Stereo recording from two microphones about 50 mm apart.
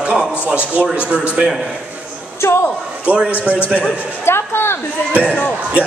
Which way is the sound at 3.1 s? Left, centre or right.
Right.